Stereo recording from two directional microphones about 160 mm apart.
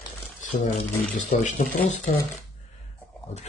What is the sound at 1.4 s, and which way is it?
Speech, 50° left (ahead or behind).